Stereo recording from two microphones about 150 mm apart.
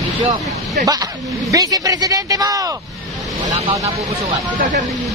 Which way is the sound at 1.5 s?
25° right (ahead or behind).